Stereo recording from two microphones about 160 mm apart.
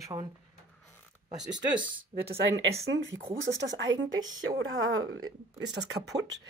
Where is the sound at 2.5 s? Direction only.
20° right (ahead or behind).